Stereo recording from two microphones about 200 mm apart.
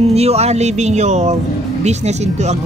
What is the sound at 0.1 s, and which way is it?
Speech, 30° right (ahead or behind).